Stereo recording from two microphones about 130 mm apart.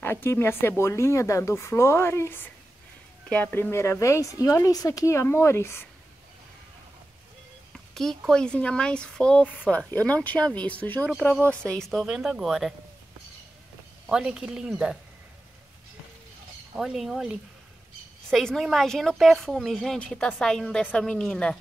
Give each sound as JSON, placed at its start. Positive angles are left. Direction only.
{"t": 0.0, "sound": "speech", "side_deg": 15}
{"t": 7.9, "sound": "a sound", "side_deg": 5}
{"t": 8.3, "sound": "speech", "side_deg": 5}
{"t": 14.0, "sound": "speech", "side_deg": -5}
{"t": 16.7, "sound": "speech", "side_deg": -5}